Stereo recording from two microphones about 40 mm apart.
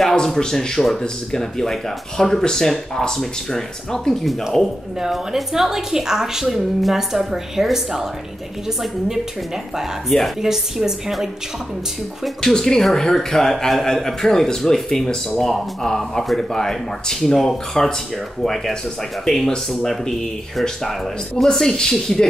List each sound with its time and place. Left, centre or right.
0.4 s a man's voice: centre
5.0 s a woman's voice: centre
10.1 s a woman's voice: centre
10.4 s a woman's voice: centre
12.4 s a man's voice: centre
19.2 s a man's voice: centre